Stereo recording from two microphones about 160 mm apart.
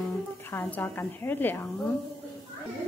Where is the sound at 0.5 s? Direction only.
10° left (ahead or behind).